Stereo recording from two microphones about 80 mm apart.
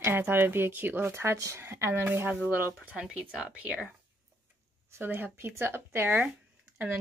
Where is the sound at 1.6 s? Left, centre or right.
Right.